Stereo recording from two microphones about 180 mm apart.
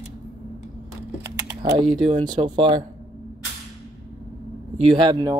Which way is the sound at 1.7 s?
25° right (ahead or behind).